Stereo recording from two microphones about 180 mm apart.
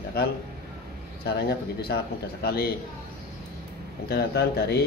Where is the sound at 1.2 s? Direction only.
60° left (ahead or behind).